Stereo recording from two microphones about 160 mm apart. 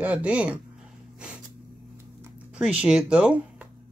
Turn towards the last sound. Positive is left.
turn(degrees=-5)  # may be behind; listen again after turning